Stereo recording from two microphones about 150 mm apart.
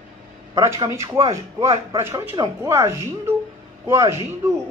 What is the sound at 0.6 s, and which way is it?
Speech, 20° right (ahead or behind).